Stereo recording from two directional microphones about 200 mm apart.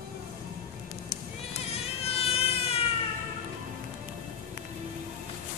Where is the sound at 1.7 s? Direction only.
30° left (ahead or behind).